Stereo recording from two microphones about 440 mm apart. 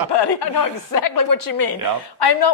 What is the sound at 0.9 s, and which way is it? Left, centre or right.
A woman's voice, left.